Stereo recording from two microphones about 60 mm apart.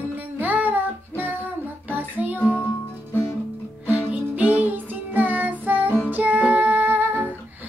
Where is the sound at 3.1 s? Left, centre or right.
Left.